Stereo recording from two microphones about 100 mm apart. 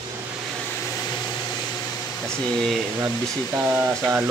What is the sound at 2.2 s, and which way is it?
Speech, 5° left (ahead or behind).